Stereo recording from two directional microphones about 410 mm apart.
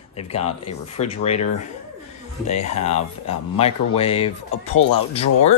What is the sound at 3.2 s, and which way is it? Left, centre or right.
Speech, centre.